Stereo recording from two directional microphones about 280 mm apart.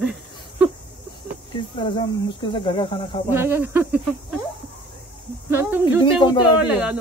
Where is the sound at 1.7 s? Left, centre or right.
Centre.